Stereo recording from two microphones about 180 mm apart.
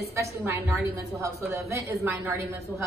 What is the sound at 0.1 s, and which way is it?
A man's voice, 15° right (ahead or behind).